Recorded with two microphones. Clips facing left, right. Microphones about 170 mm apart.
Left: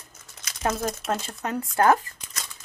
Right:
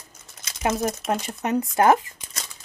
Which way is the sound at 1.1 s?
15° right (ahead or behind).